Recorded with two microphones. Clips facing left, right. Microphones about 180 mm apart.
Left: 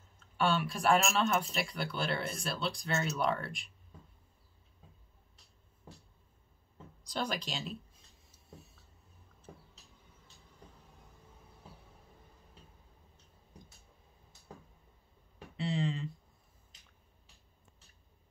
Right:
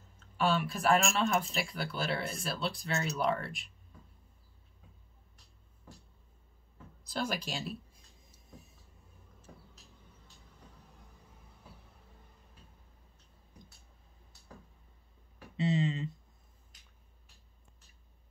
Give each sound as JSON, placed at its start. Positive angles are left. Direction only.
{"t": 0.4, "sound": "speech", "side_deg": -5}
{"t": 7.1, "sound": "speech", "side_deg": -5}
{"t": 15.5, "sound": "a sound", "side_deg": -20}